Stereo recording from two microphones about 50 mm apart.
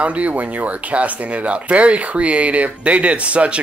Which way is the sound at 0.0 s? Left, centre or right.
Right.